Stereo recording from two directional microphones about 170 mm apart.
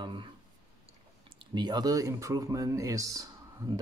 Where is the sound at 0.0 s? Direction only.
30° right (ahead or behind).